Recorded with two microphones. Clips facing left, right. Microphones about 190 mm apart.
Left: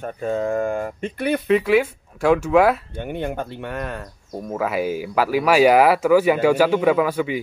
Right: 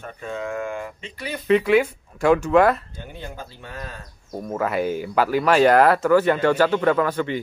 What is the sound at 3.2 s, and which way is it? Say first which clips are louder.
Speech: left 10 dB; 65° left (ahead or behind).